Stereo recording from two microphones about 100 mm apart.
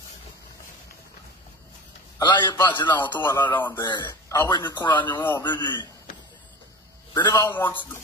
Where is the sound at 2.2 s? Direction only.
50° left (ahead or behind).